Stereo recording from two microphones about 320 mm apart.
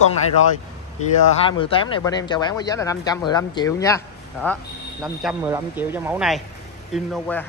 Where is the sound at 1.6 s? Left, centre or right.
Centre.